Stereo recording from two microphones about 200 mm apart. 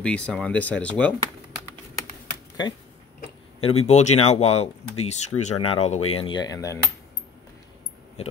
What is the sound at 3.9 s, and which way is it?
Speech, 35° left (ahead or behind).